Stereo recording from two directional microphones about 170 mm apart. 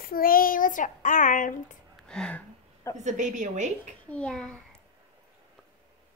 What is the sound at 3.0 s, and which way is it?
Speech, 45° right (ahead or behind).